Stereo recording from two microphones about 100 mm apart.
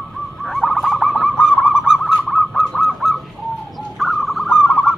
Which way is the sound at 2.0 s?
Centre (ahead or behind).